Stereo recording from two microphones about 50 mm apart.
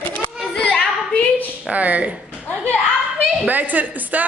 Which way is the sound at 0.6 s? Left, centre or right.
Centre.